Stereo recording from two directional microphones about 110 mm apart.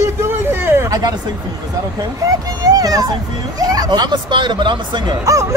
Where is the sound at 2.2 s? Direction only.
35° right (ahead or behind).